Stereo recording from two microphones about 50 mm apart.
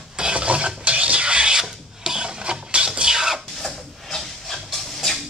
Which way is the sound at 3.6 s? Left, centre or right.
Centre.